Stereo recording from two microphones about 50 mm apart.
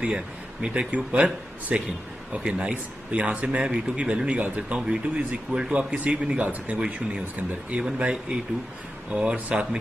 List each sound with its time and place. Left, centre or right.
0.0 s a man's voice: right
8.0 s a man's voice: right